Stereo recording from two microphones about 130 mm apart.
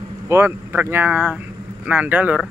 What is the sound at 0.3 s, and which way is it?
Speech, 20° right (ahead or behind).